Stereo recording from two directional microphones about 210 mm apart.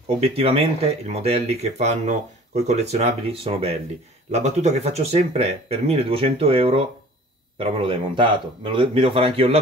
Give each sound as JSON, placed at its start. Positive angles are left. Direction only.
{"t": 0.2, "sound": "speech", "side_deg": -30}